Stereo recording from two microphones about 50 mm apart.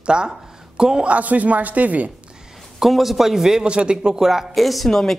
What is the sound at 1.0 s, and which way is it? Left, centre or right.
Speech, right.